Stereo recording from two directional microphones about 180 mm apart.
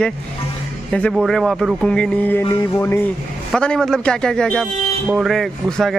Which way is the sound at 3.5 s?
5° left (ahead or behind).